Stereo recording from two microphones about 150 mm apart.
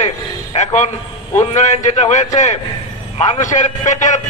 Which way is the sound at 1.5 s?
50° left (ahead or behind).